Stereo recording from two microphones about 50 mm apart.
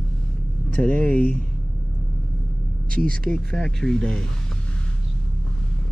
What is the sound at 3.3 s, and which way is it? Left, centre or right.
Speech, centre.